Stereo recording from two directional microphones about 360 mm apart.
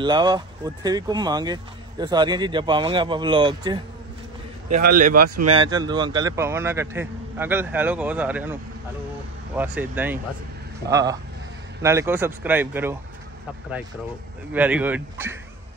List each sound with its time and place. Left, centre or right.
0.0 s speech: centre
4.6 s a man's voice: right
5.6 s speech: centre
9.6 s speech: centre
14.5 s speech: centre